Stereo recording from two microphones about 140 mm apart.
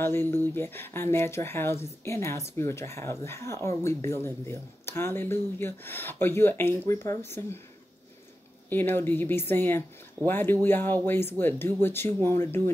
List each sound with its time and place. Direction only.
0.0 s speech: 15° left (ahead or behind)
8.6 s speech: 15° left (ahead or behind)